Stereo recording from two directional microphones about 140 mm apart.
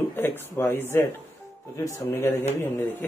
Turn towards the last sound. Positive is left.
turn(degrees=15)  # may be behind; listen again after turning